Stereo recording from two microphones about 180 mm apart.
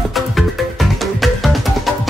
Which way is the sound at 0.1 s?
Centre (ahead or behind).